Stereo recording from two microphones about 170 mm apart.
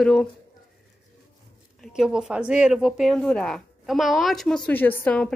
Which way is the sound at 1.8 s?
5° right (ahead or behind).